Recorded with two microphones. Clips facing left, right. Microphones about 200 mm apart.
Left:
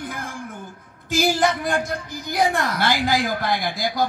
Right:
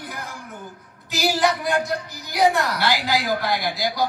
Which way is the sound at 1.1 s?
50° left (ahead or behind).